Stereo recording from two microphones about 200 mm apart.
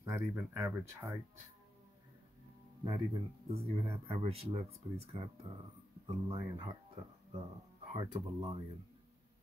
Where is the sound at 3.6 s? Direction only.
30° right (ahead or behind).